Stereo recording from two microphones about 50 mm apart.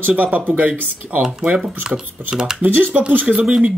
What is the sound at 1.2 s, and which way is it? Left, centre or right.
Speech, centre.